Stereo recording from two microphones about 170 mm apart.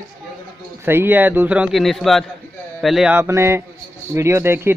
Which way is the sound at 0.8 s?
15° right (ahead or behind).